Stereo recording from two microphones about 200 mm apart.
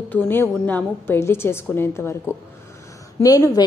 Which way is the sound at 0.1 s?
10° left (ahead or behind).